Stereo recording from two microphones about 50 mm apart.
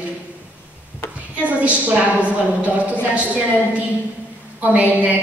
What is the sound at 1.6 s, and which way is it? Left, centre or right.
A woman's voice, right.